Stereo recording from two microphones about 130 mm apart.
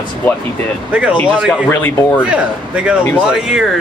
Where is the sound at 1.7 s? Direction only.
15° left (ahead or behind).